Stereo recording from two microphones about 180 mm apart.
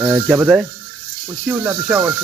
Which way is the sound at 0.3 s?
5° right (ahead or behind).